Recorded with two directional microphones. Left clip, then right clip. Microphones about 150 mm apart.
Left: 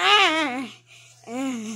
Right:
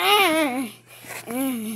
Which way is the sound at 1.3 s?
Centre (ahead or behind).